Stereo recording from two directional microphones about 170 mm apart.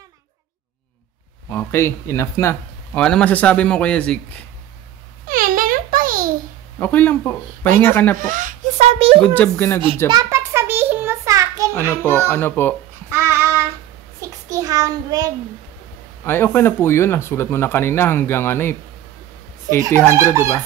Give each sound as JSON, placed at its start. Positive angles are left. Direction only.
{"t": 1.5, "sound": "speech", "side_deg": 15}
{"t": 5.2, "sound": "babbling", "side_deg": -55}
{"t": 6.8, "sound": "speech", "side_deg": 10}
{"t": 8.2, "sound": "a sound", "side_deg": -50}
{"t": 9.2, "sound": "speech", "side_deg": 10}
{"t": 10.0, "sound": "a sound", "side_deg": -20}
{"t": 11.9, "sound": "speech", "side_deg": 10}
{"t": 13.1, "sound": "child singing", "side_deg": -15}
{"t": 14.5, "sound": "a child's voice", "side_deg": -20}
{"t": 16.3, "sound": "speech", "side_deg": 15}